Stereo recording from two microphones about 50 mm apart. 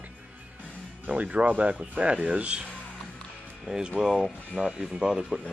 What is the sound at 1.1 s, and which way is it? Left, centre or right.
Speech, right.